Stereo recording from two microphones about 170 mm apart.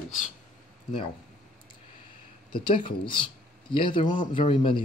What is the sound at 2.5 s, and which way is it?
Speech, 30° left (ahead or behind).